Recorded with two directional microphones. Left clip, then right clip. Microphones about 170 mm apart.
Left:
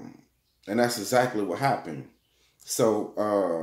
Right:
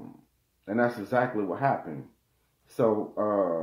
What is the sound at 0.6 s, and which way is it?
Speech, 15° left (ahead or behind).